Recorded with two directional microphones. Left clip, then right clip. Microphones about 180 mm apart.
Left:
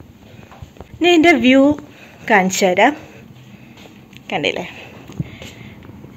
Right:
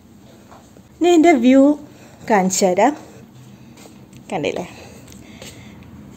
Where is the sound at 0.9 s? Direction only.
15° right (ahead or behind).